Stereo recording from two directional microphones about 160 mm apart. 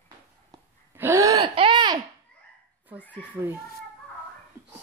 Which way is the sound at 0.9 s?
15° right (ahead or behind).